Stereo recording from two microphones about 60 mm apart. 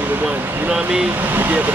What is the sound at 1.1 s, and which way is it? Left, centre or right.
Speech, right.